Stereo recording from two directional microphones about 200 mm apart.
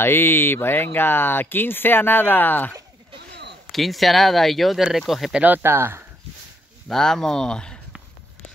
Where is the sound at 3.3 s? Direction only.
60° right (ahead or behind).